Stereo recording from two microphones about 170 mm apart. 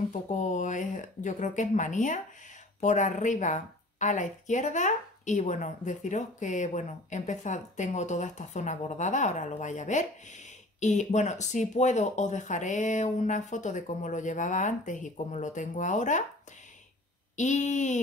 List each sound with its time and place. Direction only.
0.3 s a woman's voice: 45° left (ahead or behind)
17.4 s a woman's voice: 45° left (ahead or behind)